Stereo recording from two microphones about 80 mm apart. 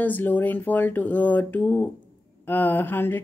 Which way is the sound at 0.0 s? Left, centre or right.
Left.